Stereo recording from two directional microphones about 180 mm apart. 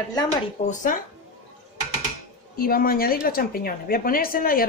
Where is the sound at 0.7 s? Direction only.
45° left (ahead or behind).